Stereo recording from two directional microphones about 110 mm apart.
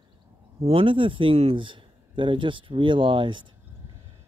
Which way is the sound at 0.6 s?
55° right (ahead or behind).